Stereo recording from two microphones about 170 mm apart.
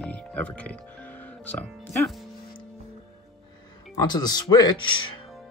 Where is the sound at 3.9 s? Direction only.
25° left (ahead or behind).